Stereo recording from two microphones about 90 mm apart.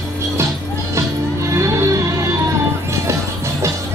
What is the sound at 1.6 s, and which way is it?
Music, 35° right (ahead or behind).